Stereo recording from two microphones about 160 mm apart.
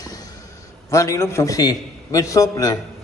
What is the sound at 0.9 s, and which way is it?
A man's voice, 20° left (ahead or behind).